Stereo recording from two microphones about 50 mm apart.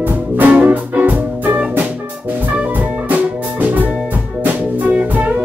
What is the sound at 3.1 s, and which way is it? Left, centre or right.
Music, right.